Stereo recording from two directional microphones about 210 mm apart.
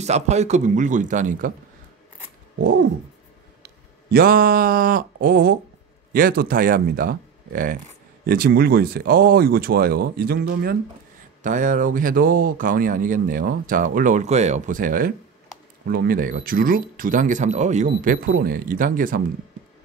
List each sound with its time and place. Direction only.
0.0 s speech: 30° right (ahead or behind)
3.6 s speech: 45° right (ahead or behind)
11.4 s speech: 35° right (ahead or behind)